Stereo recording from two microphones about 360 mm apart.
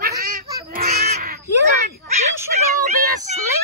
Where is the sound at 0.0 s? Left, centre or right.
Right.